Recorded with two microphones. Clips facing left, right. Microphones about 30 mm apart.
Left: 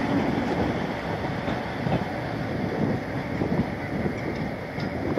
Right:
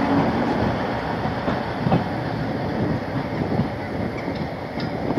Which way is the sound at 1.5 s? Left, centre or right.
Right.